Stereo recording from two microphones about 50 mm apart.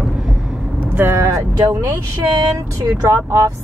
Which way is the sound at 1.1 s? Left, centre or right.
Right.